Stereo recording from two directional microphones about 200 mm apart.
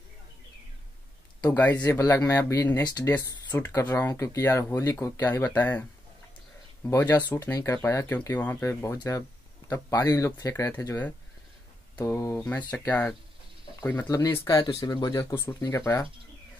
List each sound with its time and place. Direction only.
1.4 s speech: 10° left (ahead or behind)